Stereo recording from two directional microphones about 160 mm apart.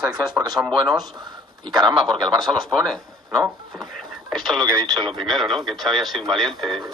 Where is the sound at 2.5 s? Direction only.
Centre (ahead or behind).